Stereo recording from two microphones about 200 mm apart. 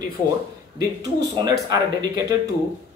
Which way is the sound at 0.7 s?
20° right (ahead or behind).